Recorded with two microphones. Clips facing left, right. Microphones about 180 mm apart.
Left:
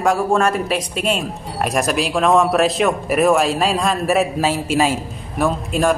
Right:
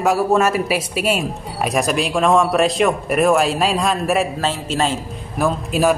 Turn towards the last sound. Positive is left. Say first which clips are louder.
# right 1 dB
turn(degrees=0)  # may be behind; listen again after turning